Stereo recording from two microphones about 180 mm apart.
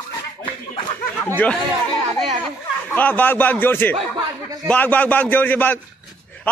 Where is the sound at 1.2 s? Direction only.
10° left (ahead or behind).